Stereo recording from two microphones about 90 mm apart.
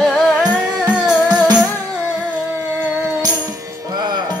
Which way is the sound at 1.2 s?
50° right (ahead or behind).